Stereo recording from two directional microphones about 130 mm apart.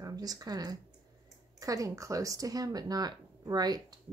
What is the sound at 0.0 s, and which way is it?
Speech, 30° right (ahead or behind).